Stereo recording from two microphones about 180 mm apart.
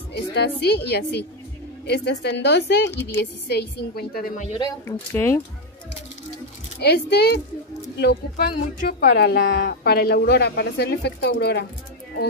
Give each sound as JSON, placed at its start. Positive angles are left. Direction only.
{"t": 0.3, "sound": "speech", "side_deg": 65}
{"t": 4.6, "sound": "speech", "side_deg": 15}
{"t": 6.8, "sound": "speech", "side_deg": 65}